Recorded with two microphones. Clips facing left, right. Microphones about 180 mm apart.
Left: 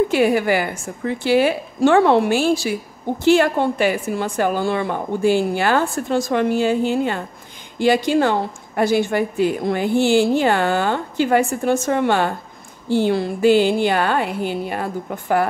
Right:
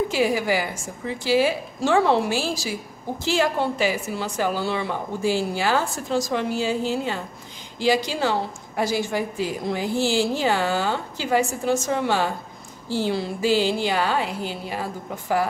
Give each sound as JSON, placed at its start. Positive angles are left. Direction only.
{"t": 0.1, "sound": "a woman's voice", "side_deg": 60}